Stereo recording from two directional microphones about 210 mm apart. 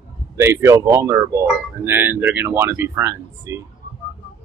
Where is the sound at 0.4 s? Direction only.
10° right (ahead or behind).